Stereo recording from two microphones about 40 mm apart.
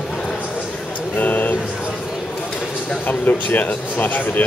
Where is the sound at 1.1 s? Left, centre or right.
Left.